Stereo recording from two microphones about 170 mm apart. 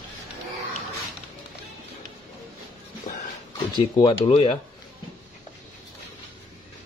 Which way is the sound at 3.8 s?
25° left (ahead or behind).